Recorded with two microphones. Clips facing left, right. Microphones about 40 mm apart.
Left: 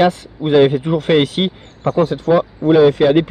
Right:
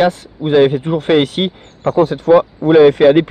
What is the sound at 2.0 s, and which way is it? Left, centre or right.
Speech, right.